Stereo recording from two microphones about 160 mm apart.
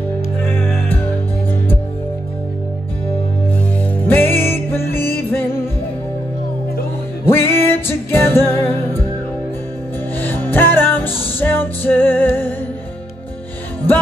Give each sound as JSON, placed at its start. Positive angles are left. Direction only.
{"t": 0.4, "sound": "music", "side_deg": 15}
{"t": 4.0, "sound": "music", "side_deg": 15}
{"t": 7.2, "sound": "music", "side_deg": 15}
{"t": 10.1, "sound": "music", "side_deg": 10}